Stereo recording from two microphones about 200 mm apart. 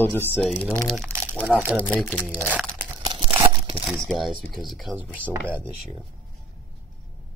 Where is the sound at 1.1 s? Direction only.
30° left (ahead or behind).